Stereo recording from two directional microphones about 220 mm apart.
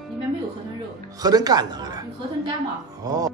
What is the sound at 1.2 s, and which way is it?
Speech, 15° right (ahead or behind).